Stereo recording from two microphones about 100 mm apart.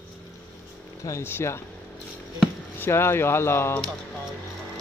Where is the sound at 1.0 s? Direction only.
30° left (ahead or behind).